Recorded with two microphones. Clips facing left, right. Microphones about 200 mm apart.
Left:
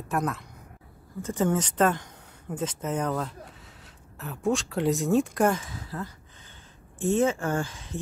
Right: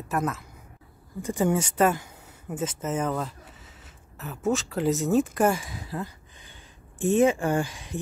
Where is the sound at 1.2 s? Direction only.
15° right (ahead or behind).